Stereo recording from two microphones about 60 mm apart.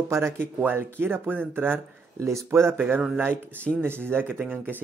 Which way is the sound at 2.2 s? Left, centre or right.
Right.